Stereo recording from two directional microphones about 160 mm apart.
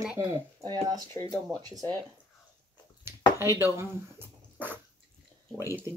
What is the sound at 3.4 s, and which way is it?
Speech, 15° right (ahead or behind).